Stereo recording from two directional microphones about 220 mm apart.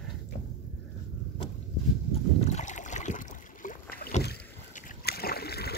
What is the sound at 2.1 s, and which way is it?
Boat, 30° left (ahead or behind).